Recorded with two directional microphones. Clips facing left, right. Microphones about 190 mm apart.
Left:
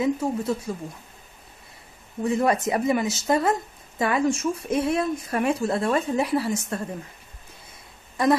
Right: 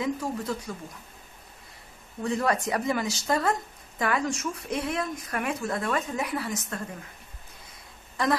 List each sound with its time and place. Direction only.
0.0 s speech: 25° left (ahead or behind)
2.2 s speech: 20° left (ahead or behind)